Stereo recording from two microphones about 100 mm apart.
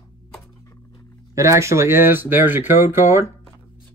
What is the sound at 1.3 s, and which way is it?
Speech, 30° right (ahead or behind).